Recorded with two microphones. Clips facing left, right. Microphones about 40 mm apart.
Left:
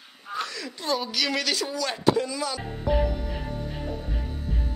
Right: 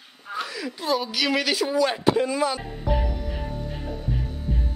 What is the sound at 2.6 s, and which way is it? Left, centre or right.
Music, centre.